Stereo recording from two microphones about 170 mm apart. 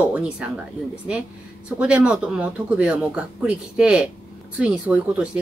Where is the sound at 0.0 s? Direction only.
5° right (ahead or behind).